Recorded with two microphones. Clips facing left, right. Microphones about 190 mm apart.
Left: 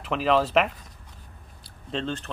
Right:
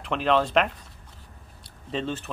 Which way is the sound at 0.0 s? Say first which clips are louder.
Even; 5° left (ahead or behind).